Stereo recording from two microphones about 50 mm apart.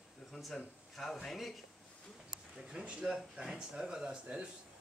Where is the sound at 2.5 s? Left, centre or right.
Right.